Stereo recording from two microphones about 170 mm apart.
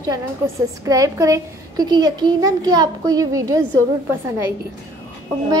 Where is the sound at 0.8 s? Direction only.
20° right (ahead or behind).